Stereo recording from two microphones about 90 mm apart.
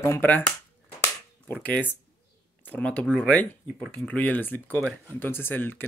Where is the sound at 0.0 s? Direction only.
25° left (ahead or behind).